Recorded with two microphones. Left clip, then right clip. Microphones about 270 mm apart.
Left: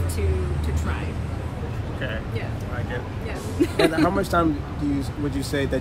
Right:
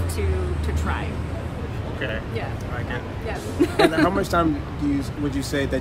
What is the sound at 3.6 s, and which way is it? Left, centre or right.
Speech, centre.